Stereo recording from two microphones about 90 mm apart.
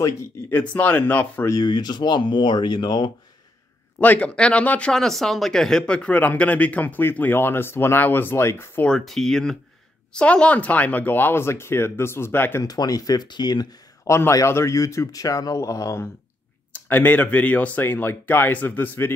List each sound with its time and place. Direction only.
0.5 s speech: 20° left (ahead or behind)
1.6 s speech: 50° left (ahead or behind)
4.0 s speech: 15° left (ahead or behind)
8.8 s speech: 5° left (ahead or behind); by 12.6 s 25° left (ahead or behind)
12.6 s speech: 45° left (ahead or behind)
14.0 s a man's voice: 35° left (ahead or behind)
16.7 s speech: 20° left (ahead or behind)